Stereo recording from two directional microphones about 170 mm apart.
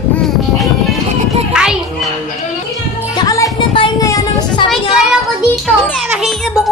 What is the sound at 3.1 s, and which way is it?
Music, 20° left (ahead or behind).